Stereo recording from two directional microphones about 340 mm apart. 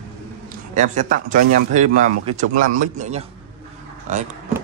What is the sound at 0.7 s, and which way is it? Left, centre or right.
A man's voice, right.